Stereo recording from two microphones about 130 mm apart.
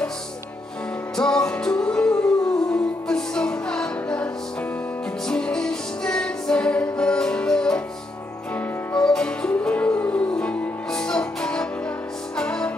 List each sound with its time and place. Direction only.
1.1 s music: 5° left (ahead or behind)
5.3 s music: 5° left (ahead or behind)